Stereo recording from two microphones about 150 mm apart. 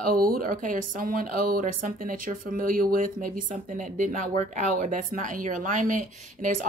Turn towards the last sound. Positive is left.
turn(degrees=-60)  # may be behind; listen again after turning